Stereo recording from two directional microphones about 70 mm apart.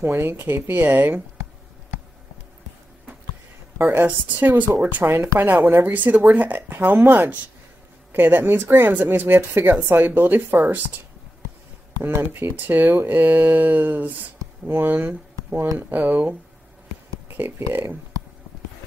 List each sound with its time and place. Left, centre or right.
0.0 s speech: right
3.7 s speech: right
12.0 s speech: right
17.4 s speech: right